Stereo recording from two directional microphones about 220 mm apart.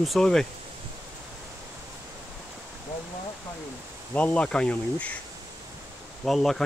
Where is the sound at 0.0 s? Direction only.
Centre (ahead or behind).